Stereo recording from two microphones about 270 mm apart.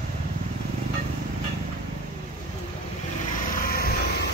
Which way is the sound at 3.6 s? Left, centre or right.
Left.